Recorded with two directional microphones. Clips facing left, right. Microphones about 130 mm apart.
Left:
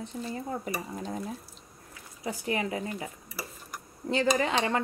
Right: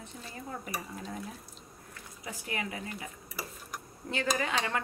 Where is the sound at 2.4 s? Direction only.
30° left (ahead or behind).